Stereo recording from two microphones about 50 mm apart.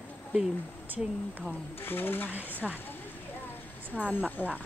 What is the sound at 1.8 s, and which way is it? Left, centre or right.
Speech, left.